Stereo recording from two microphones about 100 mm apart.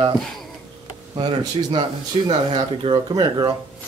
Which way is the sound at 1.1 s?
55° right (ahead or behind).